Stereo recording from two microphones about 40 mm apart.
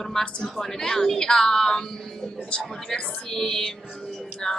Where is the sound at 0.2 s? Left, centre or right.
Left.